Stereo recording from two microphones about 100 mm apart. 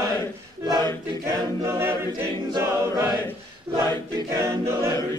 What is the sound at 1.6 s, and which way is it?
Choir, 25° right (ahead or behind).